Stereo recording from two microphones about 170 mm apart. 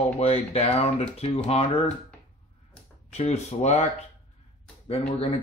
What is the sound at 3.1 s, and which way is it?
Speech, 40° left (ahead or behind).